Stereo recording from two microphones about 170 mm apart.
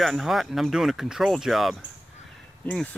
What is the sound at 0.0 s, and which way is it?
Speech, centre (ahead or behind).